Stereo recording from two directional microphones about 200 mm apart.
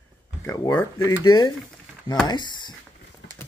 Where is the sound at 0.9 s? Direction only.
90° left.